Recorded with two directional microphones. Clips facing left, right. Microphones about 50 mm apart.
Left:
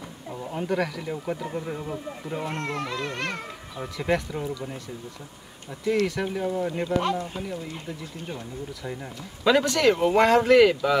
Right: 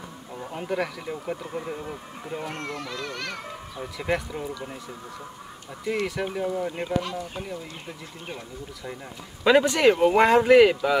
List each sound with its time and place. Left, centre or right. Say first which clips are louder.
0.5 s speech: left 2 dB; centre
2.4 s speech: left 6 dB; left
3.7 s speech: left 2 dB; centre
5.9 s speech: left 3 dB; centre
7.0 s speech: left 5 dB; left
9.4 s speech: right 2 dB; centre